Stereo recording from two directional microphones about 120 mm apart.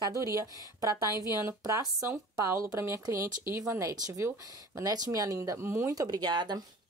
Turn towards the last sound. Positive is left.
turn(degrees=-40)  # may be behind; listen again after turning